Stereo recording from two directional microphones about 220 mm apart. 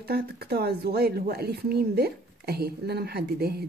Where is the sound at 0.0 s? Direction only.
45° right (ahead or behind).